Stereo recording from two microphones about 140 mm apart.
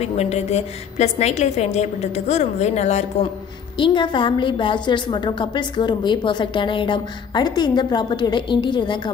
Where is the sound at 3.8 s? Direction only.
35° left (ahead or behind).